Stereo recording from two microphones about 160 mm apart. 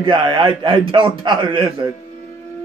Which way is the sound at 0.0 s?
30° right (ahead or behind).